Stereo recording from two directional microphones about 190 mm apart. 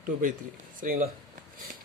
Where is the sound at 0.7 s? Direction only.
45° right (ahead or behind).